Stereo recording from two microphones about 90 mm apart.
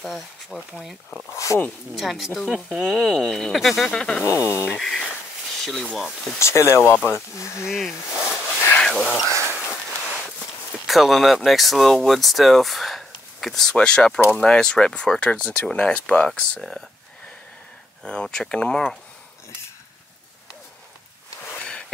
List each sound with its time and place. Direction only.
0.0 s speech: centre (ahead or behind)
1.3 s speech: 35° left (ahead or behind)
2.0 s speech: centre (ahead or behind)
4.2 s speech: 35° left (ahead or behind)
4.7 s speech: 5° left (ahead or behind)
6.4 s speech: 35° left (ahead or behind)
7.7 s a sound: 5° right (ahead or behind)
8.7 s a sound: 10° left (ahead or behind)
10.9 s speech: centre (ahead or behind)
18.0 s speech: 10° left (ahead or behind)
21.5 s sniff: 10° left (ahead or behind)